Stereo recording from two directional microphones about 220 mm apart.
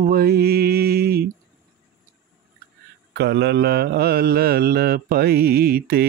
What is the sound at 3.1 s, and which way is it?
Mantra, 50° right (ahead or behind).